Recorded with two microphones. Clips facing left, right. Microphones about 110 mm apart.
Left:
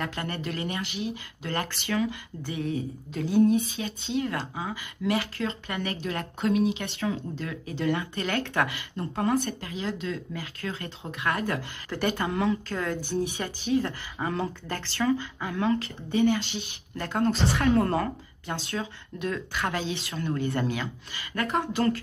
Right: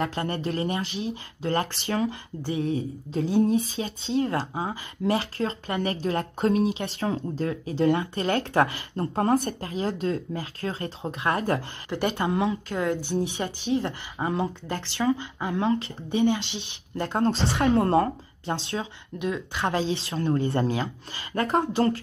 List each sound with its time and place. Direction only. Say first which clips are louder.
0.0 s speech: right 5 dB; 30° right (ahead or behind)
19.1 s speech: right 2 dB; 15° right (ahead or behind)